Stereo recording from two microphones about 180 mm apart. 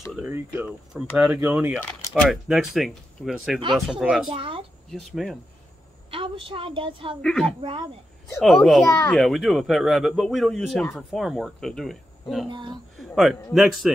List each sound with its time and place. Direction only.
0.1 s speech: 10° right (ahead or behind)
4.3 s a woman's voice: 30° right (ahead or behind)
4.9 s speech: centre (ahead or behind)
6.0 s a woman's voice: 30° right (ahead or behind)
7.2 s speech: centre (ahead or behind)
12.4 s a woman's voice: 25° right (ahead or behind)
12.9 s speech: centre (ahead or behind)